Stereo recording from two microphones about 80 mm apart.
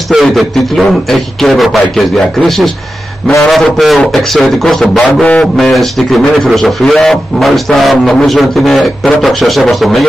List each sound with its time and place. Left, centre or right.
0.1 s a man's voice: centre
4.9 s a sound: centre
5.6 s a man's voice: centre